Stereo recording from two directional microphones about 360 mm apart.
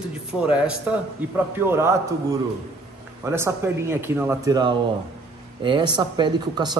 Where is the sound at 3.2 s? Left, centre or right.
Centre.